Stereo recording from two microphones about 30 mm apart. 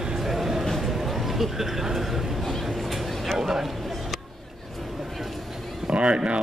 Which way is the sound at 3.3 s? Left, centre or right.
Centre.